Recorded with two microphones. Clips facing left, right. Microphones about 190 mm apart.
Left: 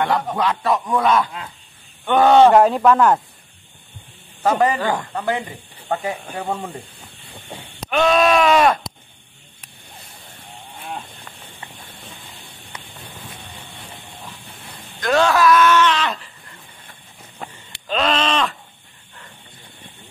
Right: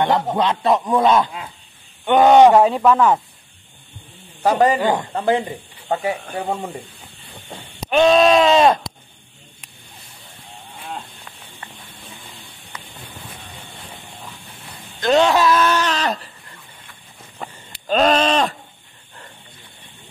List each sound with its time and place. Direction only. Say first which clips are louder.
0.0 s speech: right 2 dB; 20° right (ahead or behind)
2.5 s speech: even; centre (ahead or behind)
4.4 s speech: right 2 dB; 20° right (ahead or behind)
6.3 s speech: right 2 dB; 10° right (ahead or behind)
7.9 s speech: right 3 dB; 25° right (ahead or behind)
15.0 s speech: right 2 dB; 20° right (ahead or behind); by 16.3 s 40° right (ahead or behind)
17.8 s speech: right 4 dB; 45° right (ahead or behind)